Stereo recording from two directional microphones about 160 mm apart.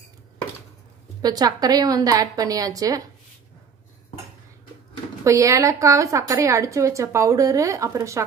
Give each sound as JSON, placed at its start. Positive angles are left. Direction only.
{"t": 1.2, "sound": "a woman's voice", "side_deg": -25}
{"t": 5.2, "sound": "a woman's voice", "side_deg": -20}